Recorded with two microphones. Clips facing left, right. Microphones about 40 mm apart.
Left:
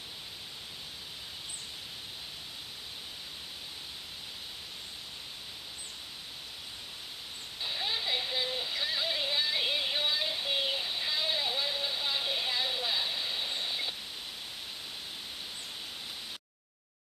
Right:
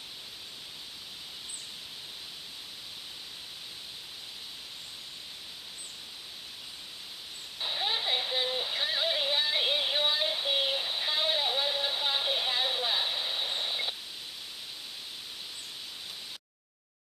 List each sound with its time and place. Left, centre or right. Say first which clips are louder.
7.6 s synthetic singing: right 3 dB; right